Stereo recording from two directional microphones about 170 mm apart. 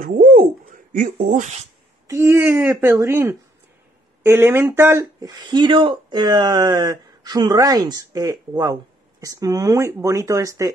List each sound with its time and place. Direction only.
0.0 s speech: 55° right (ahead or behind)
2.0 s speech: 15° right (ahead or behind)
5.5 s speech: 25° right (ahead or behind)